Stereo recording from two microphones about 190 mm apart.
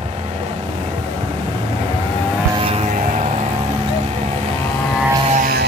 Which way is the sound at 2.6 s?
30° right (ahead or behind).